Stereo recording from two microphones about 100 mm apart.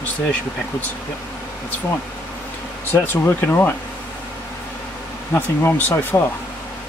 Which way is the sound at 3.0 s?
20° left (ahead or behind).